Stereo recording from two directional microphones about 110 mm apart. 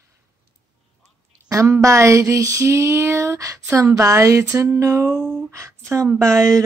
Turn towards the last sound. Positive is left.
turn(degrees=-30)  # may be behind; listen again after turning